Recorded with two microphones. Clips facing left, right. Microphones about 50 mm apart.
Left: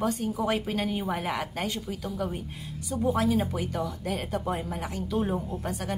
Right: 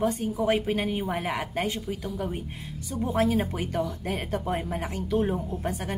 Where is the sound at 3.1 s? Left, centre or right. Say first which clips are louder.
Right 1 dB; right.